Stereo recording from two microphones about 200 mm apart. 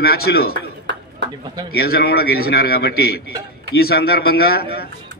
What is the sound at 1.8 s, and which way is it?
A man's voice, 50° left (ahead or behind).